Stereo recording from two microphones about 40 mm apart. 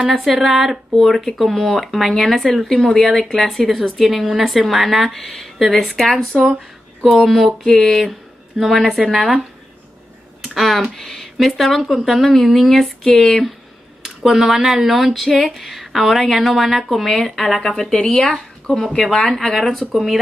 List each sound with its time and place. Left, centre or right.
0.1 s a woman's voice: centre
10.5 s a woman's voice: centre
13.0 s speech: centre
14.0 s a woman's voice: centre
19.1 s a woman's voice: centre